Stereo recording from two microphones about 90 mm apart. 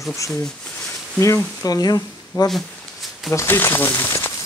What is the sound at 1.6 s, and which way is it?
Speech, 45° left (ahead or behind).